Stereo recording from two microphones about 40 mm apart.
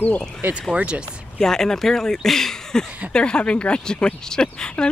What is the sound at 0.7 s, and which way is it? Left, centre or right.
Speech, right.